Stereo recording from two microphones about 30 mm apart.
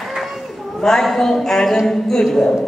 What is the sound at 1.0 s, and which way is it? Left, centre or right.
Speech, centre.